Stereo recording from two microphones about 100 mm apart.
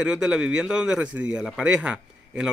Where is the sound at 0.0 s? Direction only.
5° right (ahead or behind).